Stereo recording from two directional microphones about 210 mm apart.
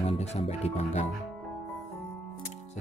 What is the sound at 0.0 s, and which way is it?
Music, 30° left (ahead or behind).